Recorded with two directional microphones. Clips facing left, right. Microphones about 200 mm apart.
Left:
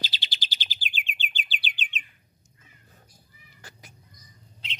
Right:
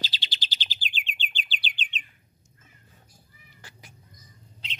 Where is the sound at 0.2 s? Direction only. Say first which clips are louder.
Even; 10° left (ahead or behind).